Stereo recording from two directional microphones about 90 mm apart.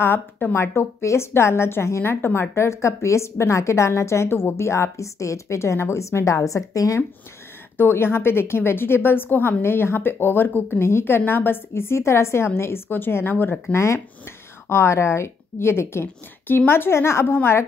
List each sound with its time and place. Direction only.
0.0 s a woman's voice: 25° left (ahead or behind)
7.7 s a woman's voice: 25° left (ahead or behind)